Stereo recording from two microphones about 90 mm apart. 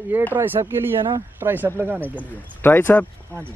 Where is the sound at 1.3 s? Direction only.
20° right (ahead or behind).